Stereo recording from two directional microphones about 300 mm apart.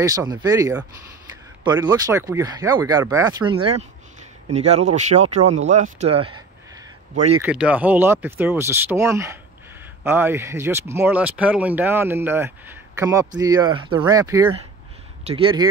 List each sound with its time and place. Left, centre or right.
0.0 s speech: centre
7.4 s speech: centre